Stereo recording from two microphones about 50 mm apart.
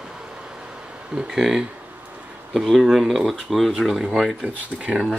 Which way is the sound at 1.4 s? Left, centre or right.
Centre.